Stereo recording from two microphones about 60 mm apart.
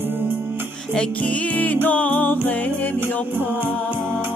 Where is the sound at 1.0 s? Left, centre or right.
Left.